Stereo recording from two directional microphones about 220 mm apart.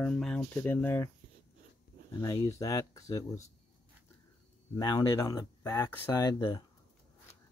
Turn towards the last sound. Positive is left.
turn(degrees=20)  # may be behind; listen again after turning